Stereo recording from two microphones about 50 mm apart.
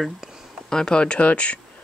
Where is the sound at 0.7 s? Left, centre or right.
Centre.